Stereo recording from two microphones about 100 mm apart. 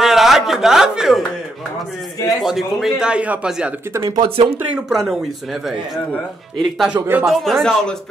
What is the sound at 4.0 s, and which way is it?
Speech, 60° right (ahead or behind).